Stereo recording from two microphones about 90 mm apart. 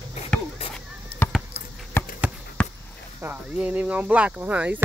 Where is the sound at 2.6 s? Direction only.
15° left (ahead or behind).